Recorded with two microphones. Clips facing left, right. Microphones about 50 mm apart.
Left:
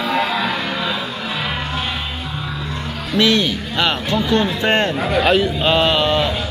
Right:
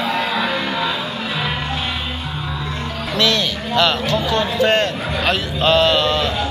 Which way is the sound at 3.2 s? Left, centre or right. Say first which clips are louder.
Left 3 dB; centre.